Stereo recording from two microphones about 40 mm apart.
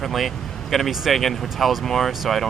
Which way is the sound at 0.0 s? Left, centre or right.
Centre.